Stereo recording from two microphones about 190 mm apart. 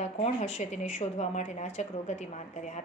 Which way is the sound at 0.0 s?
35° left (ahead or behind).